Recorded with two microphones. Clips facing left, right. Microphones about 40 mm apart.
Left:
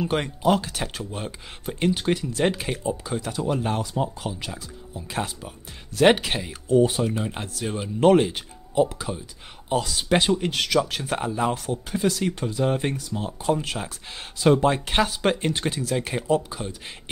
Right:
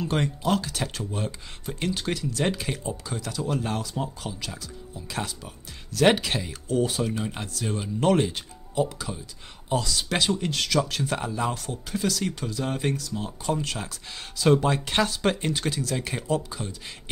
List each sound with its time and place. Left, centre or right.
0.0 s speech: centre